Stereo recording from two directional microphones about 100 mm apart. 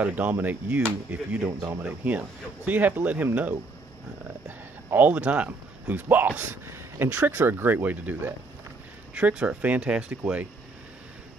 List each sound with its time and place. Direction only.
0.0 s speech: 15° right (ahead or behind)
4.9 s speech: 15° right (ahead or behind)